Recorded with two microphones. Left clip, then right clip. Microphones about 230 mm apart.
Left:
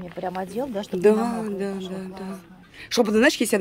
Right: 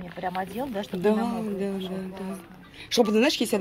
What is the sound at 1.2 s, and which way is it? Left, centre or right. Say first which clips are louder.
Speech: left 2 dB; centre.